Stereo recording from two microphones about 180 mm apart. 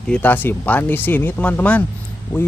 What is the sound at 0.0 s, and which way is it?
Speech, 5° left (ahead or behind).